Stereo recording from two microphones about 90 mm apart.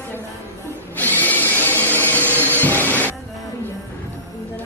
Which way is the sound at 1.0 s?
20° left (ahead or behind).